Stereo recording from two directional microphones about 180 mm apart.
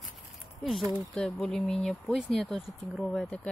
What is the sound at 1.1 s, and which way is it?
Speech, 5° left (ahead or behind).